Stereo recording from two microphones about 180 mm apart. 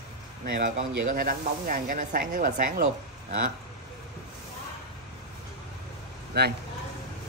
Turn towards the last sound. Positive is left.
turn(degrees=-70)  # may be behind; listen again after turning